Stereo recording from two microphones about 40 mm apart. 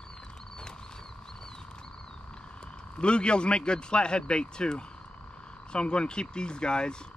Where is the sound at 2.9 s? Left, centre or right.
Left.